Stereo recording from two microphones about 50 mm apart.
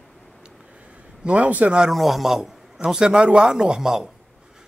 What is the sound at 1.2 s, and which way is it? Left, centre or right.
Speech, right.